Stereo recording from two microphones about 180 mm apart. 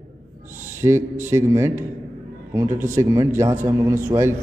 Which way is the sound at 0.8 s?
15° right (ahead or behind).